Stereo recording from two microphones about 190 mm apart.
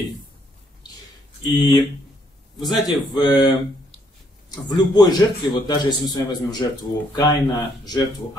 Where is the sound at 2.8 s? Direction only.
20° left (ahead or behind).